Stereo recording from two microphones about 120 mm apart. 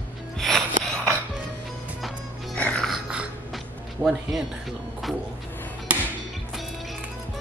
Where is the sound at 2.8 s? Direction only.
5° right (ahead or behind).